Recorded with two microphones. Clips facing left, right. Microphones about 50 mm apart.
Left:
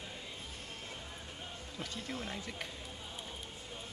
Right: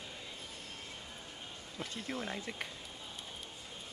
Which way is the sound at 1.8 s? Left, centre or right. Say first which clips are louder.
Right 2 dB; centre.